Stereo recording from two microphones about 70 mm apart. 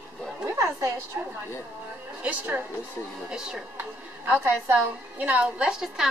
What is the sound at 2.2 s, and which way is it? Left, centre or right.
Speech, right.